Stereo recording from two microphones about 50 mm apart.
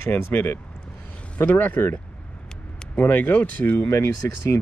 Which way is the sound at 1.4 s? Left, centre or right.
Left.